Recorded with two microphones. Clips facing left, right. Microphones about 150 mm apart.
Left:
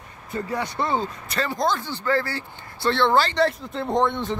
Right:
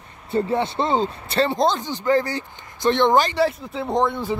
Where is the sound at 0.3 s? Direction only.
25° right (ahead or behind).